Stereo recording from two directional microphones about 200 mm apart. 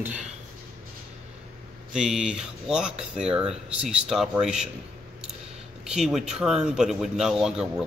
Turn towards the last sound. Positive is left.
turn(degrees=-5)  # may be behind; listen again after turning